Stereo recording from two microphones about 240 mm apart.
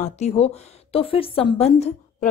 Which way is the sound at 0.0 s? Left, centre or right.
Left.